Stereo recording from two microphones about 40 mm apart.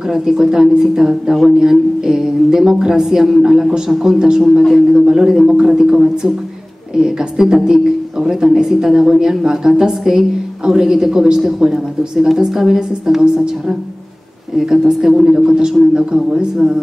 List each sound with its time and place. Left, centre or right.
0.1 s speech: centre